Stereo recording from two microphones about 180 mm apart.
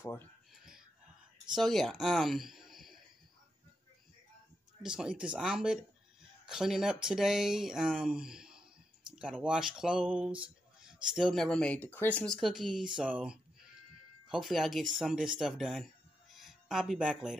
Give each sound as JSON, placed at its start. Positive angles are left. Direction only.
{"t": 0.0, "sound": "speech", "side_deg": 15}
{"t": 1.5, "sound": "speech", "side_deg": 0}
{"t": 4.8, "sound": "speech", "side_deg": -5}